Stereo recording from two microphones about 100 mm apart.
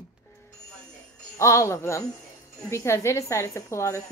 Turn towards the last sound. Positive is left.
turn(degrees=30)  # may be behind; listen again after turning